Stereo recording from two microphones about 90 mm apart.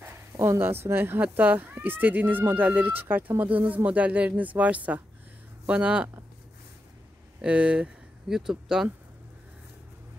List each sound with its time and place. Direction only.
0.4 s speech: 25° right (ahead or behind); by 6.0 s 10° right (ahead or behind)
7.4 s speech: 10° right (ahead or behind)